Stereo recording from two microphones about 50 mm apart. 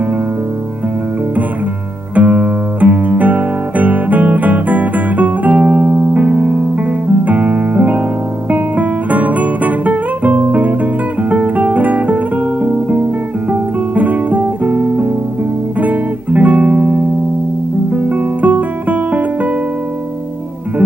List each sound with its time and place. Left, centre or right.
2.1 s guitar: right
8.5 s music: right